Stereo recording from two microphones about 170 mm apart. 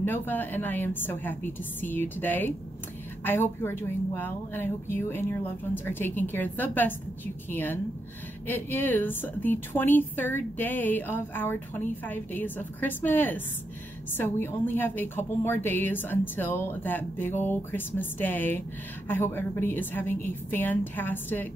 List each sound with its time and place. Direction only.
0.0 s a woman's voice: 10° left (ahead or behind)